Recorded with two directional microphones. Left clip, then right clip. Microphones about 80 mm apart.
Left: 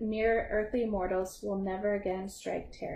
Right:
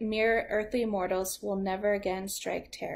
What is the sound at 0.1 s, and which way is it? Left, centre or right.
A woman's voice, right.